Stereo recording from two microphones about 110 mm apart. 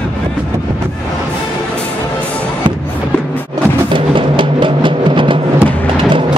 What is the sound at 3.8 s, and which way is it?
Music, 50° right (ahead or behind).